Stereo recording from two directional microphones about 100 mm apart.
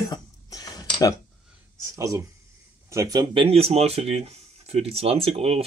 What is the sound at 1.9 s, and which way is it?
Speech, 35° right (ahead or behind).